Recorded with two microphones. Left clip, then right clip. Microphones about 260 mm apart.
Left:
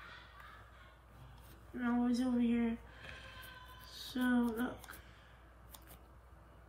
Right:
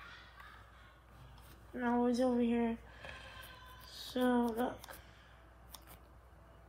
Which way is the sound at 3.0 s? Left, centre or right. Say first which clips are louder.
Right 1 dB; centre.